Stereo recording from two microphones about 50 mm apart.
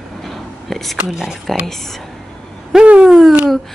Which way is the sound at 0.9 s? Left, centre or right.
Centre.